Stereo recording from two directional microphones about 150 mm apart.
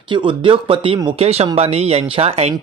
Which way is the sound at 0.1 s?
35° right (ahead or behind).